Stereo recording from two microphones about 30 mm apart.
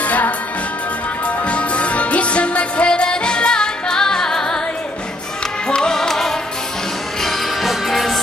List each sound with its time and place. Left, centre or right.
0.0 s music: left
1.2 s music: left; by 4.6 s centre
5.8 s music: centre
7.9 s music: centre